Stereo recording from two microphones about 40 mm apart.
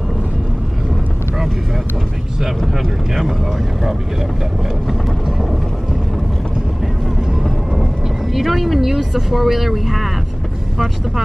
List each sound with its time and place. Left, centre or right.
2.4 s vehicle: centre
8.3 s speech: centre